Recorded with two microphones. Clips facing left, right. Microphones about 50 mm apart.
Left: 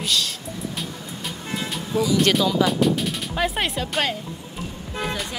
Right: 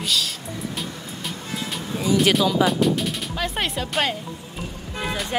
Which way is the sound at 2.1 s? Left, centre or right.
Centre.